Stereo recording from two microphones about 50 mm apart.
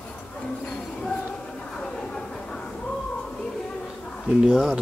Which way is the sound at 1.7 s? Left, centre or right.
Centre.